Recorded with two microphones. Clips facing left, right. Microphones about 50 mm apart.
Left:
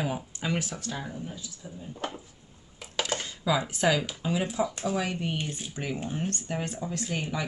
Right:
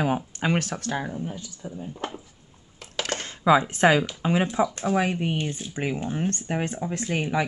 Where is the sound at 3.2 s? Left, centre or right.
Right.